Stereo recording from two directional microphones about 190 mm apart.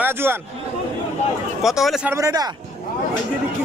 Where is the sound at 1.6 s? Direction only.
Centre (ahead or behind).